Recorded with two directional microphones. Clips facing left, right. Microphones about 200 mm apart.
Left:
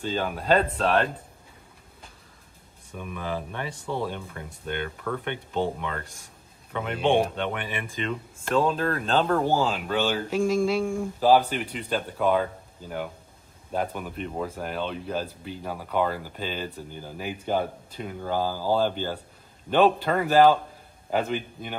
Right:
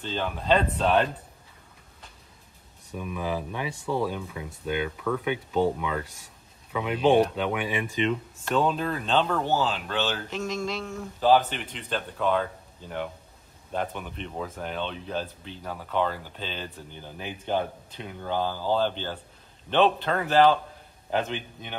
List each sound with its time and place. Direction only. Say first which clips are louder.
0.0 s speech: left 2 dB; 10° left (ahead or behind)
3.2 s speech: right 1 dB; 10° right (ahead or behind)
6.0 s speech: left 2 dB; 50° left (ahead or behind)
6.7 s a man's voice: right 2 dB; centre (ahead or behind)